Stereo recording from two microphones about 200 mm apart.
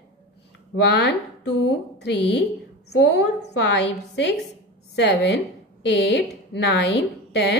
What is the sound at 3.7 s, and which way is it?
A woman's voice, 60° left (ahead or behind).